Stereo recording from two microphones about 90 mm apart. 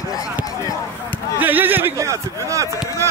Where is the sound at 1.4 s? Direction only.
20° right (ahead or behind).